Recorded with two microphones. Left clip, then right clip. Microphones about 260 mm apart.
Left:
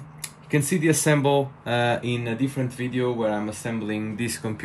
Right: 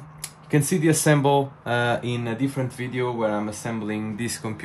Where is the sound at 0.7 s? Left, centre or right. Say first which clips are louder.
Right 1 dB; centre.